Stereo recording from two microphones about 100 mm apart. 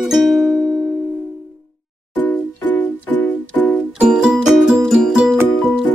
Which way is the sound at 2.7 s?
15° left (ahead or behind).